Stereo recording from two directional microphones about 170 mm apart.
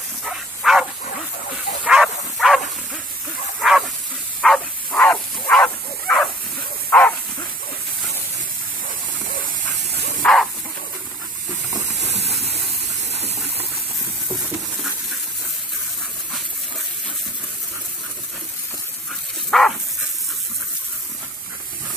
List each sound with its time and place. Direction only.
0.2 s bow-wow: centre (ahead or behind)
1.9 s bow-wow: centre (ahead or behind)
3.6 s hiss: 5° right (ahead or behind)
4.4 s bow-wow: 5° left (ahead or behind)
10.2 s a sound: centre (ahead or behind)
19.5 s sizzle: centre (ahead or behind)